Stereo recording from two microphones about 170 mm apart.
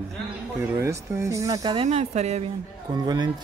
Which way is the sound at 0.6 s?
15° right (ahead or behind).